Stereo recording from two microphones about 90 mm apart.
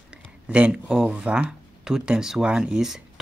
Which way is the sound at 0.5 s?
10° right (ahead or behind).